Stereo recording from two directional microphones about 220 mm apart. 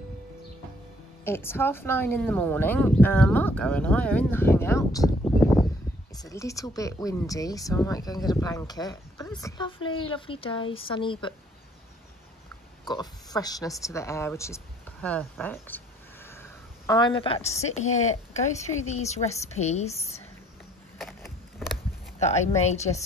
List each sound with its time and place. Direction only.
1.2 s a woman's voice: 10° left (ahead or behind)
12.8 s a woman's voice: 20° left (ahead or behind)
21.0 s a sound: centre (ahead or behind)
22.2 s a woman's voice: 30° left (ahead or behind)